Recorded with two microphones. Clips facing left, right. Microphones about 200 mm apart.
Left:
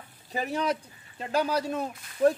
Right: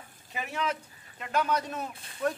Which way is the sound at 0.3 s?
35° left (ahead or behind).